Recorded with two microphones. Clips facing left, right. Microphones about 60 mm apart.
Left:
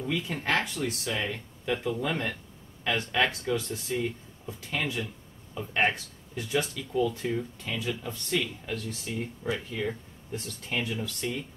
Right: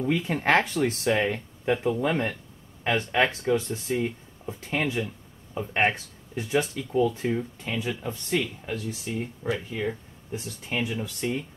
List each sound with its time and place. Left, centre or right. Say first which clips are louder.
0.0 s speech: right 6 dB; right
1.7 s speech: right 5 dB; right